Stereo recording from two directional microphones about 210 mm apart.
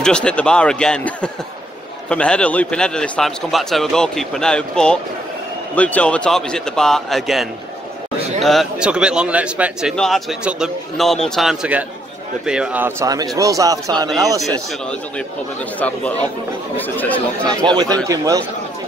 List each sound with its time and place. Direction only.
0.0 s a man's voice: 5° left (ahead or behind); by 14.4 s 15° right (ahead or behind)
15.8 s speech: 5° left (ahead or behind)
18.0 s speech: 15° right (ahead or behind)